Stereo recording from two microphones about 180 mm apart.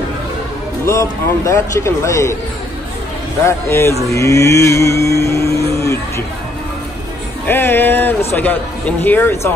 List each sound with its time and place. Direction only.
0.8 s a man's voice: 15° left (ahead or behind)
3.4 s a man's voice: 15° left (ahead or behind)
4.1 s mantra: 15° left (ahead or behind)
7.4 s a man's voice: 10° left (ahead or behind)